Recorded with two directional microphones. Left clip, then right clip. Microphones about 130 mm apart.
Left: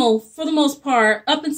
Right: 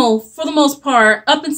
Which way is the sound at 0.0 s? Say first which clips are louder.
Right 3 dB; 25° right (ahead or behind).